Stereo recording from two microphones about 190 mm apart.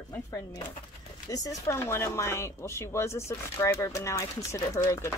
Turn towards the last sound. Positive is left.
turn(degrees=15)  # may be behind; listen again after turning